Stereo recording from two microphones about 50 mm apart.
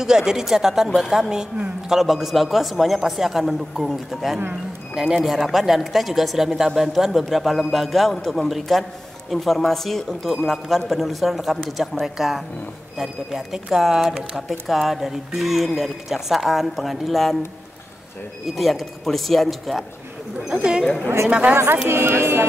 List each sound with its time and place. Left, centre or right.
0.0 s speech: centre
18.5 s speech: centre
21.3 s speech: right
21.8 s speech: right